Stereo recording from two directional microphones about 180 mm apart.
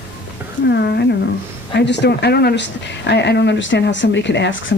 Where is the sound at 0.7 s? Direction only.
70° left (ahead or behind).